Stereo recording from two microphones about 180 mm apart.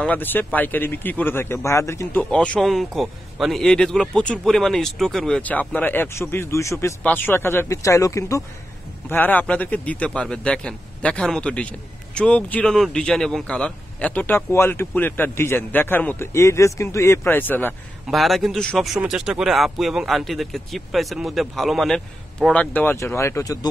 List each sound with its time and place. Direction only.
0.0 s a man's voice: 10° left (ahead or behind)
18.0 s a man's voice: centre (ahead or behind); by 23.7 s 20° left (ahead or behind)